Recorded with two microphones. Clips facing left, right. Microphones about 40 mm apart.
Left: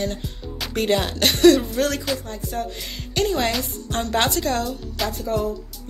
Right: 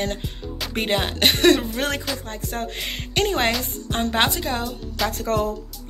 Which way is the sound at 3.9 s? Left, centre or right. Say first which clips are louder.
Even; right.